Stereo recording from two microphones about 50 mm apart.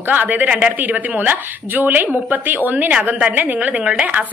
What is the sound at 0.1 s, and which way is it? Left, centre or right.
Speech, right.